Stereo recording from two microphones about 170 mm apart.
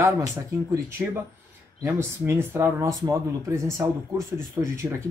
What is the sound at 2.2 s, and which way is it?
Speech, 15° right (ahead or behind).